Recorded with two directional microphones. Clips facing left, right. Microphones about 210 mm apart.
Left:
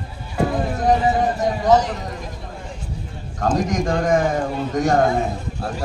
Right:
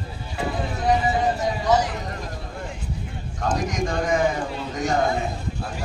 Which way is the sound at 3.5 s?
50° left (ahead or behind).